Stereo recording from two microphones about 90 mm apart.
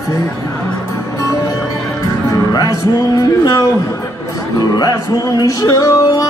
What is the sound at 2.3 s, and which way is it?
Speech, 40° left (ahead or behind).